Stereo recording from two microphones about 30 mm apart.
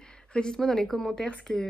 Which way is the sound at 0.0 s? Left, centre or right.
Left.